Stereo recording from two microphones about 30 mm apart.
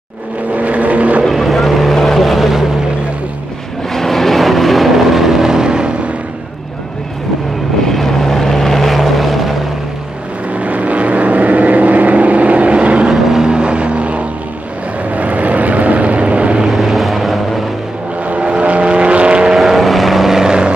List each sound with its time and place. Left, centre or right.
0.5 s vehicle: right
1.3 s boat: centre
3.9 s vehicle: centre; by 5.9 s right
7.8 s vehicle: centre
10.5 s vehicle: right
13.1 s vehicle: centre
13.5 s vehicle: right
15.1 s vehicle: right
16.6 s vehicle: centre
16.9 s vehicle: centre
18.2 s vehicle: right
18.5 s vehicle: right
19.5 s vehicle: centre
20.3 s vehicle: right